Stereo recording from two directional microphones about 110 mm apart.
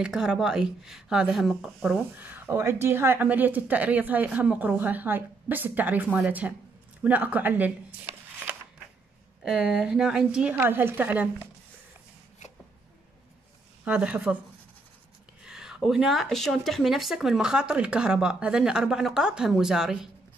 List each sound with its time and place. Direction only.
0.0 s speech: 5° right (ahead or behind)
9.4 s speech: 5° right (ahead or behind)
13.8 s speech: 10° right (ahead or behind)
15.4 s speech: 5° right (ahead or behind)